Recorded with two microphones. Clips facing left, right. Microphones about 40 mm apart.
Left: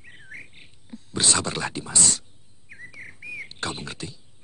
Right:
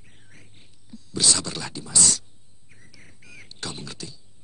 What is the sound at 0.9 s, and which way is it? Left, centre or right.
Speech, left.